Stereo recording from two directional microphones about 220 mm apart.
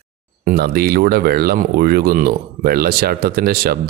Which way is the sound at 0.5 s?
45° right (ahead or behind).